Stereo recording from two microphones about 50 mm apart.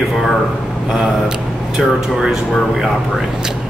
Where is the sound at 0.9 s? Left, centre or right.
Centre.